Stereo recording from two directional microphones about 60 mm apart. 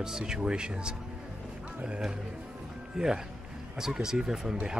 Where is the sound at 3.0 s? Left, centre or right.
Centre.